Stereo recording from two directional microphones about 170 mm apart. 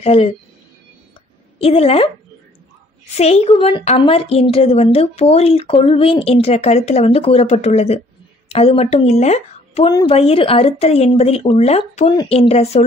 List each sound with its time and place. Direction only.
0.0 s speech: 35° left (ahead or behind)
1.6 s speech: 35° left (ahead or behind)
3.2 s speech: 35° left (ahead or behind)